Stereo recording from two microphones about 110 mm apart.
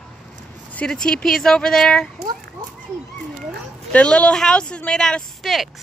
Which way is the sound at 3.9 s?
10° left (ahead or behind).